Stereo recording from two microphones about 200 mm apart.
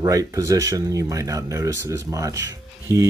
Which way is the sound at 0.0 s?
15° right (ahead or behind).